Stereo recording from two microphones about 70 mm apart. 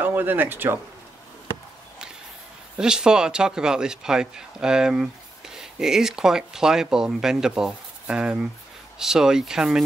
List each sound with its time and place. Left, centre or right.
0.0 s speech: right
2.8 s speech: centre